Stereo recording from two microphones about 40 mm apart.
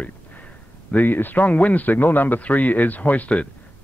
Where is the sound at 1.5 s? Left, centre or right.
Left.